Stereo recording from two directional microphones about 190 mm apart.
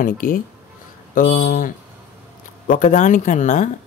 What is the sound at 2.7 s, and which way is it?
Speech, 40° left (ahead or behind).